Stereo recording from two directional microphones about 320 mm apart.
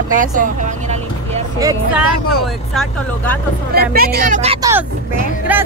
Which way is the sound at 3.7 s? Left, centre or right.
Right.